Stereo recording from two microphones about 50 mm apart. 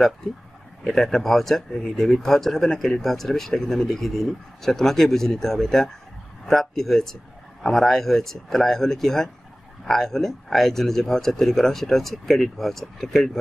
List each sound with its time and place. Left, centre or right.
0.8 s speech: centre